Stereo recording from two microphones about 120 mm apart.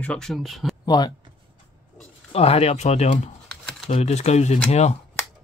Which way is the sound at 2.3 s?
55° left (ahead or behind).